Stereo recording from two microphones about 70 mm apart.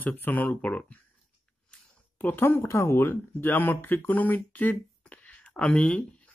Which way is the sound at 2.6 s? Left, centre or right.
Left.